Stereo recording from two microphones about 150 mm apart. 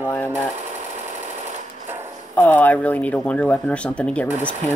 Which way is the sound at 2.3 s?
10° left (ahead or behind).